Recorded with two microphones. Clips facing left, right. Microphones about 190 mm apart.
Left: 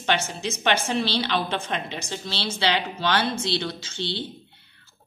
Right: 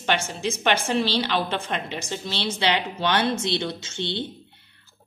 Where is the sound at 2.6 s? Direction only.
20° right (ahead or behind).